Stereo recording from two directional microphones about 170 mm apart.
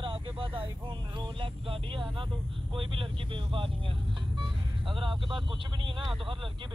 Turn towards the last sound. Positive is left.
turn(degrees=-30)  # may be behind; listen again after turning